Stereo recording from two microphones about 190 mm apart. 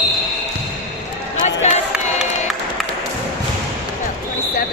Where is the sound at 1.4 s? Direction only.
35° left (ahead or behind).